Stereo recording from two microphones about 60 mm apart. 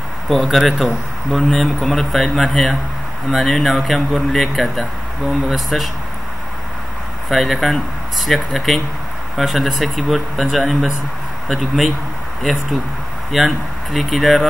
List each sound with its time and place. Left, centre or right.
0.3 s speech: centre
7.2 s speech: centre
13.3 s speech: centre